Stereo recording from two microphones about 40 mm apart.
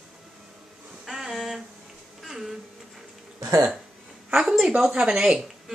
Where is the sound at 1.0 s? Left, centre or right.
Centre.